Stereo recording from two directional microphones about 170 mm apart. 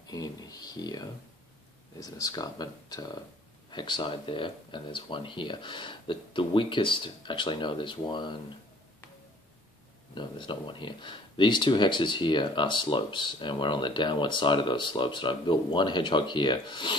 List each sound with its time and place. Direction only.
0.0 s a sound: 20° left (ahead or behind)
2.0 s speech: 20° left (ahead or behind)
10.1 s speech: 25° left (ahead or behind)